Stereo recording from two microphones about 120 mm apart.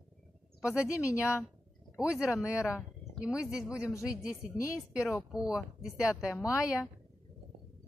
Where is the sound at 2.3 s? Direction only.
25° left (ahead or behind).